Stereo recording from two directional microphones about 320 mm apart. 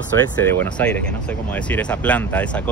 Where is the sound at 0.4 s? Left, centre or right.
Centre.